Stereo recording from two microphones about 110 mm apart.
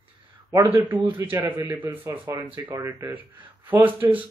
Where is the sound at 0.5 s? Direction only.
30° right (ahead or behind).